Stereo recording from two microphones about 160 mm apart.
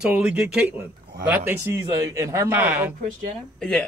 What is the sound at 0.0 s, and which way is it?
A man's voice, 5° right (ahead or behind).